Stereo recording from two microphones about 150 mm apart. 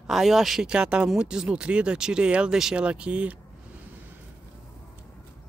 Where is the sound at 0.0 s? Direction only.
Centre (ahead or behind).